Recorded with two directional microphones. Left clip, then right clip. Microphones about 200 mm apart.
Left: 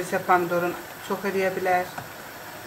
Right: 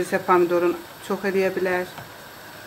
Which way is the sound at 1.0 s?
50° right (ahead or behind).